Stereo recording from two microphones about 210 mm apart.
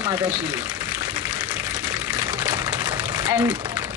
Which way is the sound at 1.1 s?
10° right (ahead or behind).